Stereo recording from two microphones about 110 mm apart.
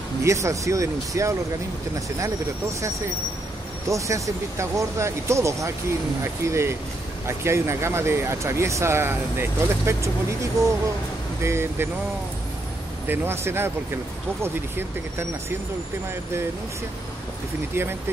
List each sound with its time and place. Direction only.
0.2 s speech: 25° right (ahead or behind)
3.9 s speech: 30° right (ahead or behind)
13.1 s speech: 20° right (ahead or behind)
17.8 s speech: 20° right (ahead or behind)